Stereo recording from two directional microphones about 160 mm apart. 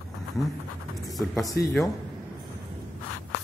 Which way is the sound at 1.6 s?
90° left.